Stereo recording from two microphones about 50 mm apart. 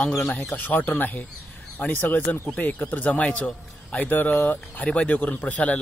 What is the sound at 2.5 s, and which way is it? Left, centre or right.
A man's voice, left.